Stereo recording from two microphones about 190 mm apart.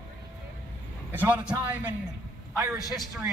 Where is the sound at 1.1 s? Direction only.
10° right (ahead or behind).